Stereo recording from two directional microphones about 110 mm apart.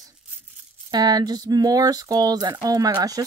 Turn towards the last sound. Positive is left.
turn(degrees=-35)  # may be behind; listen again after turning